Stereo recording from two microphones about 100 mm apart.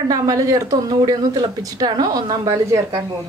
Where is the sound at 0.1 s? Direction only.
35° right (ahead or behind).